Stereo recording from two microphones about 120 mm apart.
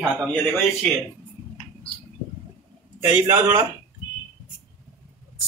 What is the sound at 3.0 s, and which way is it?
Speech, 20° right (ahead or behind).